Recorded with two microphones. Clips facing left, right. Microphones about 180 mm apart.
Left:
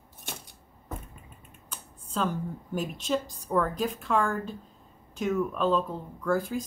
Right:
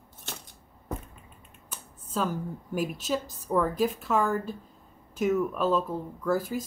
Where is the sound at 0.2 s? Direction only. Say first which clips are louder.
Left 1 dB; 15° left (ahead or behind).